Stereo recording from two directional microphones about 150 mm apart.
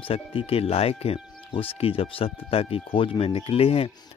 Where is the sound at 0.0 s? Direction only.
35° left (ahead or behind).